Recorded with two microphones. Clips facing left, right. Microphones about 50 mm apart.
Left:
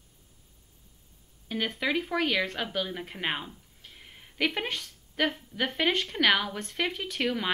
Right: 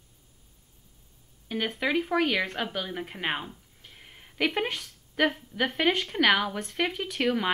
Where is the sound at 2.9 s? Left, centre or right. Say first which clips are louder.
Right 1 dB; centre.